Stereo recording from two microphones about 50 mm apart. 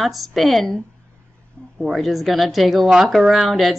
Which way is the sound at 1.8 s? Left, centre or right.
Centre.